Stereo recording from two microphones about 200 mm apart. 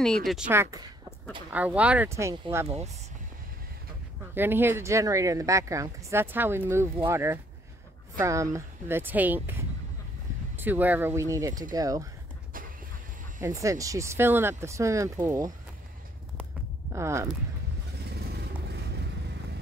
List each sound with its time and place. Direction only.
0.0 s speech: centre (ahead or behind)
0.5 s speech: 15° right (ahead or behind)
4.4 s speech: 10° right (ahead or behind)
13.4 s speech: 15° right (ahead or behind)
16.9 s speech: 15° right (ahead or behind)
18.1 s vehicle: 55° right (ahead or behind)